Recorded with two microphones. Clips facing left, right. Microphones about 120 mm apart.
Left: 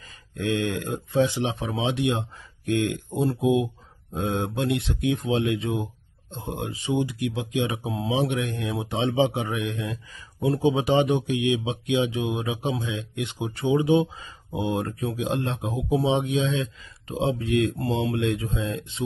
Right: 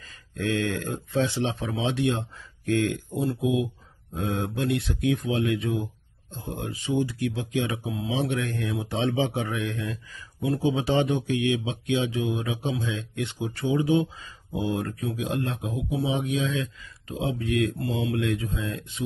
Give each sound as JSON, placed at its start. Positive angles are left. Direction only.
{"t": 0.3, "sound": "speech", "side_deg": 15}